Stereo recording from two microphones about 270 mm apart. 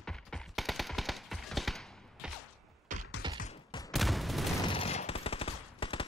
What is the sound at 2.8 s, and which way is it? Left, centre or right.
Music, right.